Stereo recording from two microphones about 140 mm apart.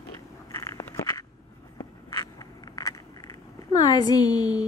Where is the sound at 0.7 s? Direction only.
20° left (ahead or behind).